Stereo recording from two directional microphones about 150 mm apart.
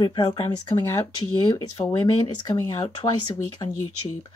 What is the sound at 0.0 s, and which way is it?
Speech, 30° left (ahead or behind).